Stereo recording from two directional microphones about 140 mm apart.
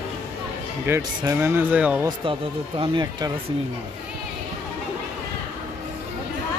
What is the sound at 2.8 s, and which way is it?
Speech, 30° right (ahead or behind).